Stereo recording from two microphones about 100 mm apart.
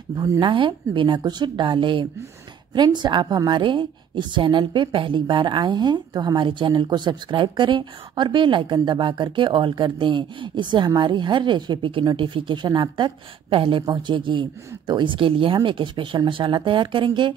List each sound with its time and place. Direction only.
0.4 s a woman's voice: 55° right (ahead or behind)